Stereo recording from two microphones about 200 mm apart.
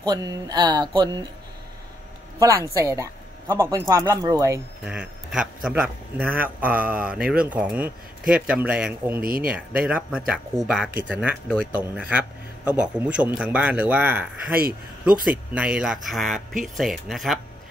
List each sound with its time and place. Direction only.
0.1 s speech: 20° right (ahead or behind)
2.3 s speech: 15° right (ahead or behind)
9.2 s speech: 45° right (ahead or behind)
9.5 s speech: 5° right (ahead or behind)
15.2 s speech: 5° right (ahead or behind)